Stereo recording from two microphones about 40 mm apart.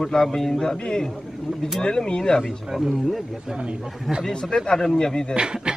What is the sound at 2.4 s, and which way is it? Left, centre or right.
Speech, centre.